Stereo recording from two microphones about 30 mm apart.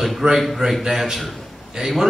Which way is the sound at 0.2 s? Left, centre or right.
Right.